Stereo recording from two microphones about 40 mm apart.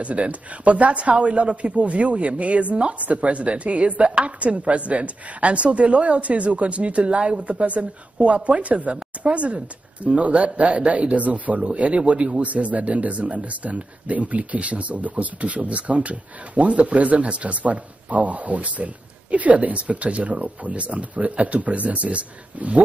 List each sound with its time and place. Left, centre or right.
0.0 s a man's voice: right